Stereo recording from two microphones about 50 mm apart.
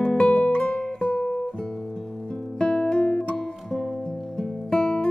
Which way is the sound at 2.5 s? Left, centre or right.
Centre.